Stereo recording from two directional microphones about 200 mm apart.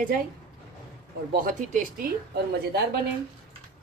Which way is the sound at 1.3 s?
45° right (ahead or behind).